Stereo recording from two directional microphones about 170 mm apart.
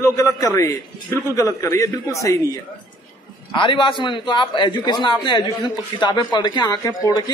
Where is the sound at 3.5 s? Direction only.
30° left (ahead or behind).